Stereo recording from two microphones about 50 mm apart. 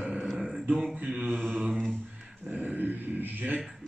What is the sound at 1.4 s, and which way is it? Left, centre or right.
Mantra, centre.